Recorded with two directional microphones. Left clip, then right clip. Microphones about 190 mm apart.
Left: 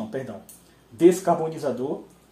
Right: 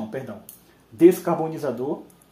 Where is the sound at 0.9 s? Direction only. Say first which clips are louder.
Right 1 dB; 20° right (ahead or behind).